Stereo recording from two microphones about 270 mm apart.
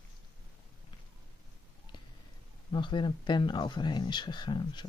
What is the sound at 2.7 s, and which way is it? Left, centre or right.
Speech, centre.